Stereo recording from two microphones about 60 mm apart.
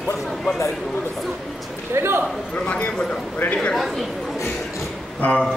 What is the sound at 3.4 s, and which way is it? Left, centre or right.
Speech, left.